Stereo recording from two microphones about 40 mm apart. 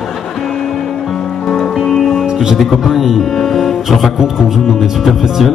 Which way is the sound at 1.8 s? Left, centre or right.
Centre.